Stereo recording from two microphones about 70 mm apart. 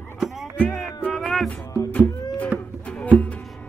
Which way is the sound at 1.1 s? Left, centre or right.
Centre.